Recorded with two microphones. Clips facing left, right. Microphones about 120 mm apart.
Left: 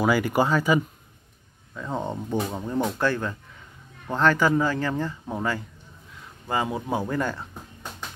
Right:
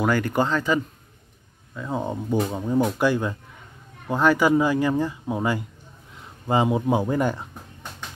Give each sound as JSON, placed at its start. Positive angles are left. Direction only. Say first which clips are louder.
{"t": 0.0, "sound": "speech", "louder": "even", "side_deg": 10}
{"t": 1.8, "sound": "speech", "louder": "right 2 dB", "side_deg": -5}